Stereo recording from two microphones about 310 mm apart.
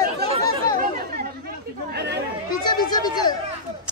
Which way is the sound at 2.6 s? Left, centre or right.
Centre.